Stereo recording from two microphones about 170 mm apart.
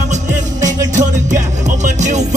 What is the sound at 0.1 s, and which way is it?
Music, 45° right (ahead or behind).